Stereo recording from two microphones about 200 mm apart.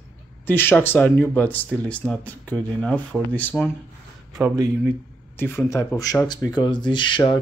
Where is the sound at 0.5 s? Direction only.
10° left (ahead or behind).